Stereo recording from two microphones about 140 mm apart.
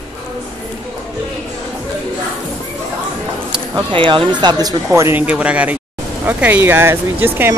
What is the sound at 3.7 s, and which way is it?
Speech, 35° right (ahead or behind).